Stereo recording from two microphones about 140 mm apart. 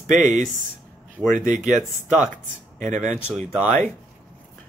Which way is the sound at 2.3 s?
60° right (ahead or behind).